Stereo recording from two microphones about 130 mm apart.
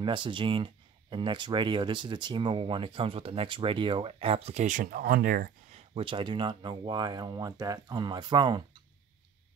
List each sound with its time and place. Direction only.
0.0 s speech: 40° right (ahead or behind); by 5.8 s 90° right
5.8 s speech: 45° right (ahead or behind)